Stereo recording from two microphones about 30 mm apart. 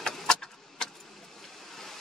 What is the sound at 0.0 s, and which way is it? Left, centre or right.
Vehicle, left.